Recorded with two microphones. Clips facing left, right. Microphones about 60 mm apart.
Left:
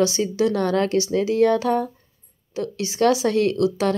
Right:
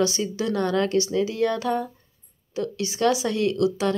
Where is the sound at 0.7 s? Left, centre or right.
Left.